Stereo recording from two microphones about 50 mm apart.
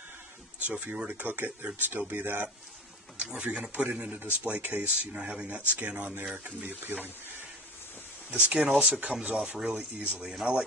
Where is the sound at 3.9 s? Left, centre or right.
Right.